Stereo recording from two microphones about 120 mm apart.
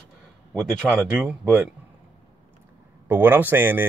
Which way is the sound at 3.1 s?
15° right (ahead or behind).